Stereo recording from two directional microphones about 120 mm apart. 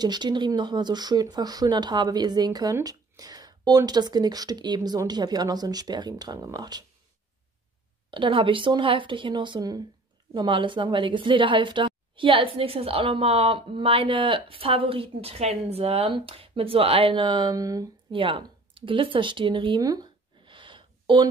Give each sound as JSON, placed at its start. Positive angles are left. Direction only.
{"t": 0.0, "sound": "speech", "side_deg": -40}
{"t": 8.1, "sound": "a woman's voice", "side_deg": -45}
{"t": 18.1, "sound": "a sound", "side_deg": -45}